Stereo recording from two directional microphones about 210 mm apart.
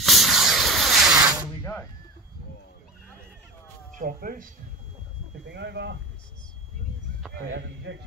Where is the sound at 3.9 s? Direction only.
40° right (ahead or behind).